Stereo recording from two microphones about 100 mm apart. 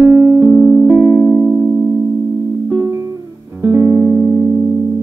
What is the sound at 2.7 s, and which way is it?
Music, 30° right (ahead or behind).